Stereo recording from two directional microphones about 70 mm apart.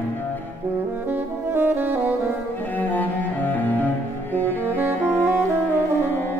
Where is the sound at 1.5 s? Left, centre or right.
Right.